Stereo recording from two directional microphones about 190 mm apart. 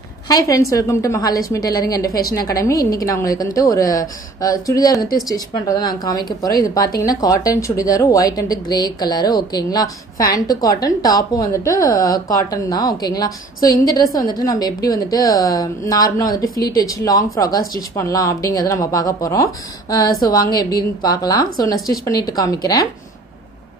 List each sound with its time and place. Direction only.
0.3 s a woman's voice: 20° left (ahead or behind)